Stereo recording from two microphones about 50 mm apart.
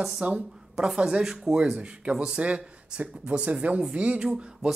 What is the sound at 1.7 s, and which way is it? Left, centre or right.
Speech, right.